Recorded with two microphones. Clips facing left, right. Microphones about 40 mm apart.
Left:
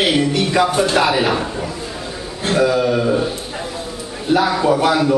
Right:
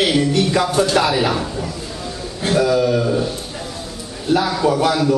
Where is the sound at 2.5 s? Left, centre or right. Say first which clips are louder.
Even; centre.